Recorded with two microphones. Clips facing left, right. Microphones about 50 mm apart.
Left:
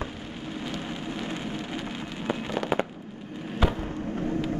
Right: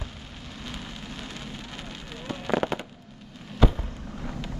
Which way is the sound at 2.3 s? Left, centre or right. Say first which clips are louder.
Left 5 dB; left.